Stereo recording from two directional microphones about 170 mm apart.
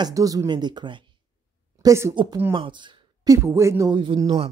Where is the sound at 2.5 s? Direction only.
30° right (ahead or behind).